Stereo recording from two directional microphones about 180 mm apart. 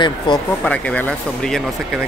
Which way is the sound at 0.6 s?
5° left (ahead or behind).